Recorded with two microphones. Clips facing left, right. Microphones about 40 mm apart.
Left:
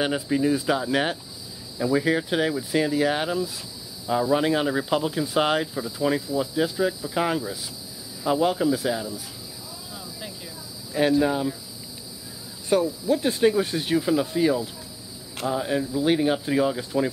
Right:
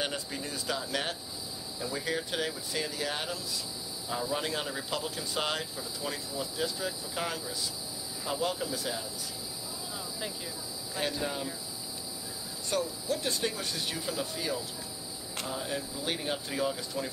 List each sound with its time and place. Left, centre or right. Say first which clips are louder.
0.0 s speech: left 12 dB; left
11.0 s speech: left 13 dB; centre
12.6 s speech: left 10 dB; centre